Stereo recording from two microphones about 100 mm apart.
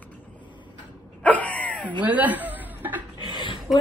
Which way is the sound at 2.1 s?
15° right (ahead or behind).